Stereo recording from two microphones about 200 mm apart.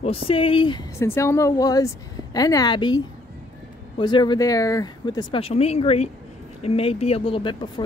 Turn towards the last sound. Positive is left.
turn(degrees=25)  # may be behind; listen again after turning